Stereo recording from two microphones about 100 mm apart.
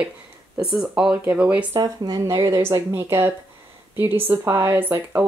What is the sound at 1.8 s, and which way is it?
Speech, 40° right (ahead or behind).